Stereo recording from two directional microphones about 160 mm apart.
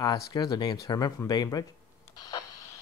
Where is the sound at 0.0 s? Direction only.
25° left (ahead or behind).